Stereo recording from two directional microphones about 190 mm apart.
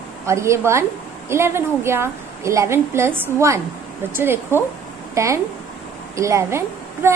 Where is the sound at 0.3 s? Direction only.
15° right (ahead or behind).